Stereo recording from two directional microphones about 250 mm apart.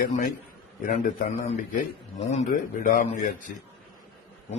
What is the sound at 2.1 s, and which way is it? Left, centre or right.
A man's voice, left.